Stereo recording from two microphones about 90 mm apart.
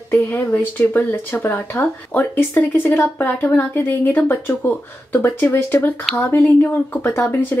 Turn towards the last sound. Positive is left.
turn(degrees=20)  # may be behind; listen again after turning